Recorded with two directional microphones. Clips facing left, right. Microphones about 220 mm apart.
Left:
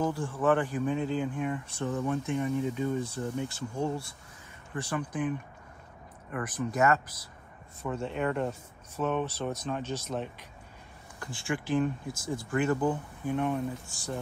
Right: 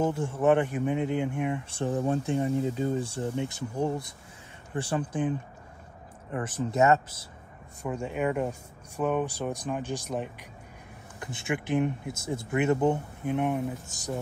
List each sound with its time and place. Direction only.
0.0 s speech: 25° right (ahead or behind)
4.7 s speech: 30° right (ahead or behind)
6.3 s speech: 25° right (ahead or behind)
7.8 s speech: 10° right (ahead or behind)